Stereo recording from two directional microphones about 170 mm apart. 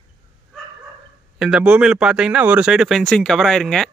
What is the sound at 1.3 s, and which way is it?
A man's voice, 5° right (ahead or behind).